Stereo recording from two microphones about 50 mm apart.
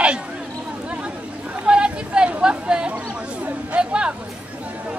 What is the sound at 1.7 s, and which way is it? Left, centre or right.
Chatter, centre.